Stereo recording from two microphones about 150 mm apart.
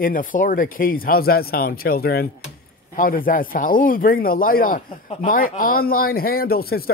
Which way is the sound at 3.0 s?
70° left (ahead or behind).